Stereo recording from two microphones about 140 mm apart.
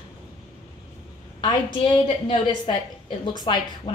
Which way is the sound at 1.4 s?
35° left (ahead or behind).